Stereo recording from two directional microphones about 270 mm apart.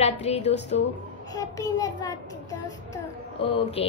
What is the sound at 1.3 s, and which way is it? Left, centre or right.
Speech, centre.